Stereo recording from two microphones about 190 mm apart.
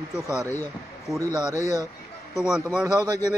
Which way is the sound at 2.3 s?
5° right (ahead or behind).